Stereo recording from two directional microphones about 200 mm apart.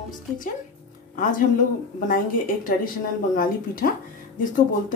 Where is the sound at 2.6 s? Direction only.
45° left (ahead or behind).